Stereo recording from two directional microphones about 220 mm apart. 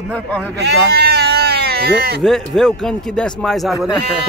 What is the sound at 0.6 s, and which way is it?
Bleat, 50° right (ahead or behind).